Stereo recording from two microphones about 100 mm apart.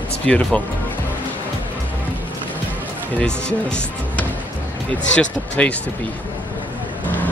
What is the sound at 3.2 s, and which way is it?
Speech, 10° left (ahead or behind).